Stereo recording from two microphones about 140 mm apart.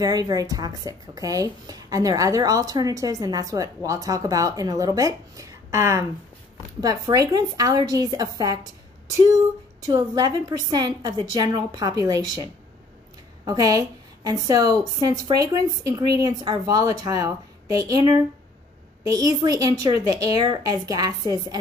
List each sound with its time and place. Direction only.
0.0 s a woman's voice: 25° right (ahead or behind)
9.8 s a woman's voice: 25° right (ahead or behind)
13.5 s a woman's voice: 25° right (ahead or behind)